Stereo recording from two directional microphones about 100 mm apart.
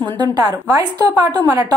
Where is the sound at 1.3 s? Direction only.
40° right (ahead or behind).